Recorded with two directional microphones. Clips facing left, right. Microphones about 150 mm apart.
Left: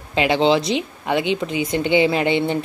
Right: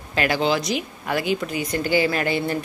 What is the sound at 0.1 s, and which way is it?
A woman's voice, 20° left (ahead or behind).